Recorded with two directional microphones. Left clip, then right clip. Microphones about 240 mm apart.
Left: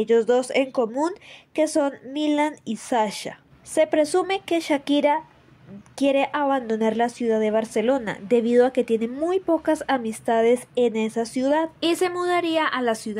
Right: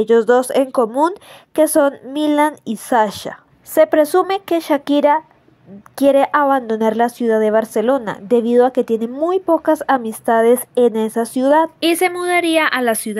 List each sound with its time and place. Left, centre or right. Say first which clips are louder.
0.0 s a woman's voice: right 7 dB; centre